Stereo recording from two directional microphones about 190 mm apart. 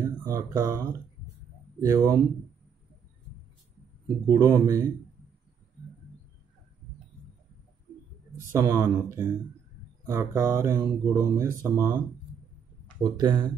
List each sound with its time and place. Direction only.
0.0 s speech: 15° right (ahead or behind)
4.3 s speech: 15° right (ahead or behind)
8.5 s speech: 15° right (ahead or behind)
13.0 s speech: 20° right (ahead or behind)